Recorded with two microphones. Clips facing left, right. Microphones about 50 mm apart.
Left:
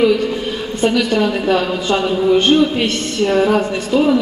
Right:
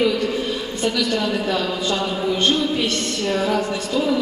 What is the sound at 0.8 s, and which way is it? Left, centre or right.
A woman's voice, left.